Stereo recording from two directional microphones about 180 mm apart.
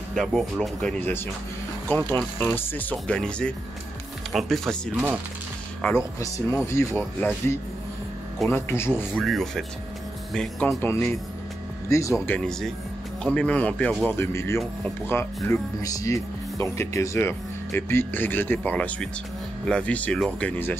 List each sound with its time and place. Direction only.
0.1 s speech: centre (ahead or behind)
6.1 s speech: 15° left (ahead or behind)
8.5 s speech: 15° left (ahead or behind)
9.2 s speech: centre (ahead or behind); by 12.4 s 15° left (ahead or behind)
12.4 s speech: 5° left (ahead or behind)